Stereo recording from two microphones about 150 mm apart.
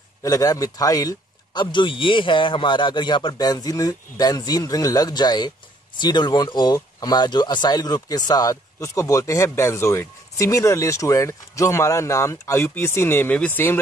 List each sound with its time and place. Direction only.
0.2 s speech: 25° left (ahead or behind)